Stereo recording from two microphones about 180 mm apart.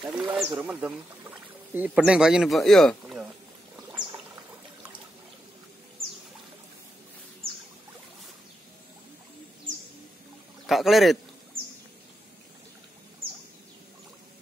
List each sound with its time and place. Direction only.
0.0 s speech: centre (ahead or behind)
4.0 s pour: 45° right (ahead or behind)
10.7 s speech: centre (ahead or behind)